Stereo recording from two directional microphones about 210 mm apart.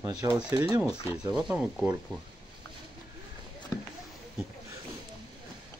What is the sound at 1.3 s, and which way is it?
Speech, centre (ahead or behind).